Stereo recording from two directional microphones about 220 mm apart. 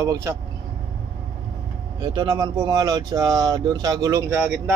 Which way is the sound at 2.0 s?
20° right (ahead or behind).